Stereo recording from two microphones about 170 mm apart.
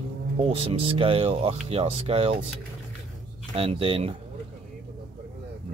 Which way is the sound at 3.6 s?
35° right (ahead or behind).